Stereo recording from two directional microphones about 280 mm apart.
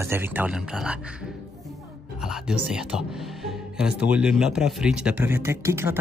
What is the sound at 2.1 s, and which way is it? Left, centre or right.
Speech, centre.